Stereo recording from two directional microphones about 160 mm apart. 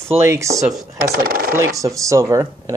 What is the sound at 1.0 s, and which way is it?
Speech, 65° right (ahead or behind).